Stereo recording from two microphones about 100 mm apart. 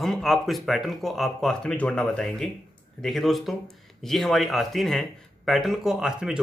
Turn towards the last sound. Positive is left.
turn(degrees=-5)  # may be behind; listen again after turning